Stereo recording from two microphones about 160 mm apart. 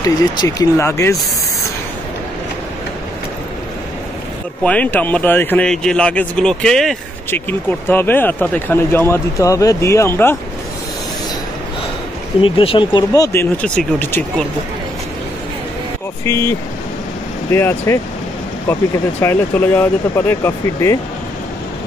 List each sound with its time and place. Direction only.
0.0 s speech: 25° left (ahead or behind)
4.6 s speech: 10° left (ahead or behind)
12.4 s speech: 35° left (ahead or behind); by 14.2 s 10° left (ahead or behind)
16.3 s speech: 15° left (ahead or behind)
19.2 s speech: 15° left (ahead or behind)